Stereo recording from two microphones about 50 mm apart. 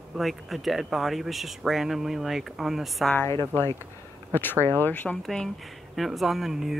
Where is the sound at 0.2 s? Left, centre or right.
Centre.